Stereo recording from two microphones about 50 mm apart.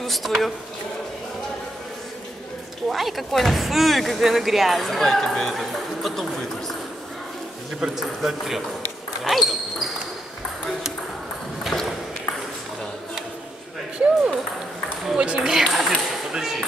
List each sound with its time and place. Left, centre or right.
0.0 s speech: centre
2.9 s speech: centre
7.8 s speech: centre
13.9 s ping: right
15.1 s a sound: right
15.4 s a sound: centre